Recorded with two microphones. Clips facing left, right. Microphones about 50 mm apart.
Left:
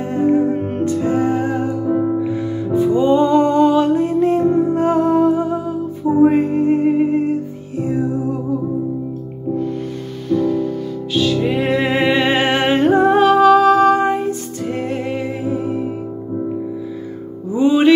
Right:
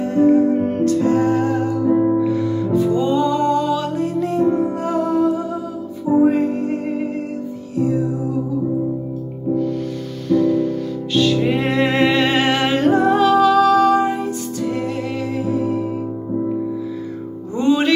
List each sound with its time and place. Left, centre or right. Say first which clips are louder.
0.0 s music: right 2 dB; left
10.3 s music: right 1 dB; centre
12.2 s music: left 1 dB; centre
17.6 s music: left 4 dB; centre